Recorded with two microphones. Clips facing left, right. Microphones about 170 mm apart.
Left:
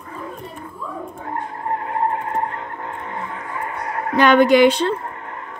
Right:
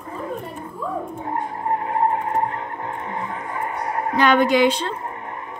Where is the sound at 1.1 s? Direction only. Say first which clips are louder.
Right 2 dB; 20° right (ahead or behind).